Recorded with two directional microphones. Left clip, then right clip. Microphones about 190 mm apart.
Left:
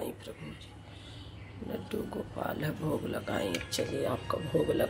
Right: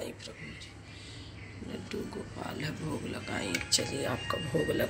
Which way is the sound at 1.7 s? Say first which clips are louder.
Left 3 dB; 25° left (ahead or behind).